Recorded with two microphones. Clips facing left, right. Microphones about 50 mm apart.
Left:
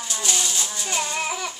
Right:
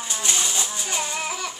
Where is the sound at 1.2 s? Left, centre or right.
Centre.